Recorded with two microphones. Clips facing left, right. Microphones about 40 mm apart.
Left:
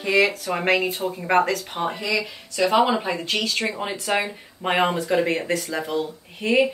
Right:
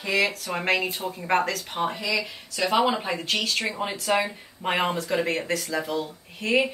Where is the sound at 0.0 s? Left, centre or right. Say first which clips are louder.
Left 5 dB; centre.